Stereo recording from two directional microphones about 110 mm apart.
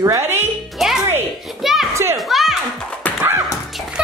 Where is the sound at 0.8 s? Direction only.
Centre (ahead or behind).